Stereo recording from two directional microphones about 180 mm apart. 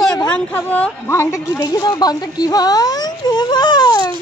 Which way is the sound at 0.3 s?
10° left (ahead or behind).